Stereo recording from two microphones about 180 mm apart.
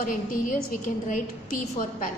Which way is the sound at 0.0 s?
50° left (ahead or behind).